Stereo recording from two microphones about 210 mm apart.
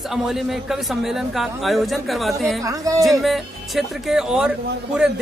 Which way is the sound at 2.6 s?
15° right (ahead or behind).